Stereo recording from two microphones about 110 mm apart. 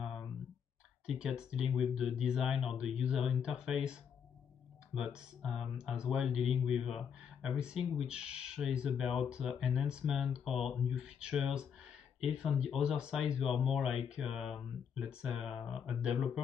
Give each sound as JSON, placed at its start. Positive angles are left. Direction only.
{"t": 0.0, "sound": "clicking", "side_deg": 0}
{"t": 1.0, "sound": "speech", "side_deg": -5}